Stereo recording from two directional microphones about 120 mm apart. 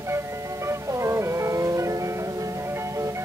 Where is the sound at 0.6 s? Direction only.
25° right (ahead or behind).